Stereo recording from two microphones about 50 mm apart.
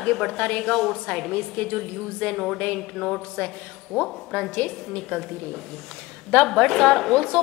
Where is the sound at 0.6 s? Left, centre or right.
Centre.